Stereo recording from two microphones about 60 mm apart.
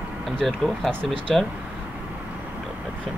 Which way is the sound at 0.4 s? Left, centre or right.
Centre.